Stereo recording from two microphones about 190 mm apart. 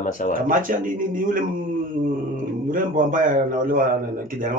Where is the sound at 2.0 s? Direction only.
45° right (ahead or behind).